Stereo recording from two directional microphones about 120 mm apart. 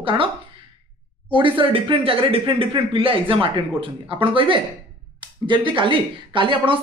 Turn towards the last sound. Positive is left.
turn(degrees=-45)  # may be behind; listen again after turning